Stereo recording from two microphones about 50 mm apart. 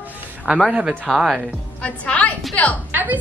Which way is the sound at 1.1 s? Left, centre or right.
Centre.